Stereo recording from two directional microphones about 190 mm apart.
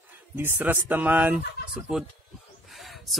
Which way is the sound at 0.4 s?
10° right (ahead or behind).